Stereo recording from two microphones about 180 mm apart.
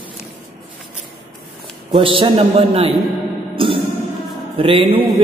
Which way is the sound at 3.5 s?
30° right (ahead or behind).